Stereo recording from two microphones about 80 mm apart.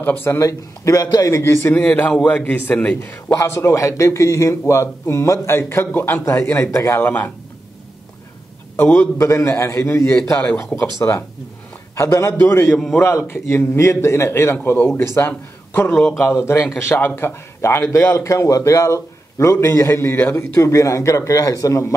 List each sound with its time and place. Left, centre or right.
0.0 s a man's voice: left
0.4 s a man's voice: left
1.6 s a man's voice: centre
3.3 s a man's voice: left
5.9 s a man's voice: left
6.7 s a man's voice: left
7.0 s a man's voice: left
8.7 s a man's voice: left
9.2 s a man's voice: left
10.3 s a man's voice: left
12.7 s a man's voice: centre
13.3 s a man's voice: left
15.9 s a man's voice: centre
16.2 s a man's voice: left